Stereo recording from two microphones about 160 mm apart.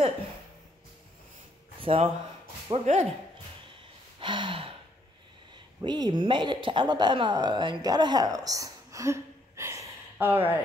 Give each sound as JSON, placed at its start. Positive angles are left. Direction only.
{"t": 1.8, "sound": "speech", "side_deg": -35}
{"t": 2.7, "sound": "speech", "side_deg": -45}
{"t": 4.2, "sound": "gasp", "side_deg": -30}
{"t": 5.8, "sound": "speech", "side_deg": -25}